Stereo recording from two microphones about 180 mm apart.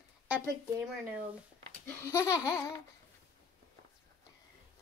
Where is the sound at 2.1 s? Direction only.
15° left (ahead or behind).